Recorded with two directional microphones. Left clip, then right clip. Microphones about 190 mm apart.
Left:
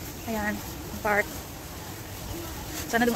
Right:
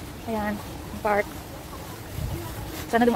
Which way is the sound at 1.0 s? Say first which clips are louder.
Right 2 dB; 10° right (ahead or behind).